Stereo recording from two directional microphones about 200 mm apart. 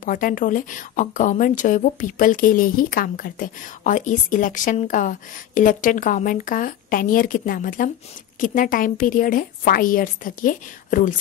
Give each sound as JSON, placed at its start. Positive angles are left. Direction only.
{"t": 0.0, "sound": "a woman's voice", "side_deg": 45}